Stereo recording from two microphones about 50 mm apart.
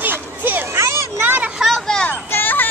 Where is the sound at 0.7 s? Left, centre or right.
Right.